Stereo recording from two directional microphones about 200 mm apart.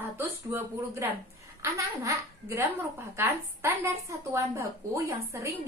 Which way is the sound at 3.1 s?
10° right (ahead or behind).